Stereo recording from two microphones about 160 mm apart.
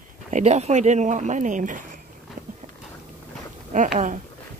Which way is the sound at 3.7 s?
55° right (ahead or behind).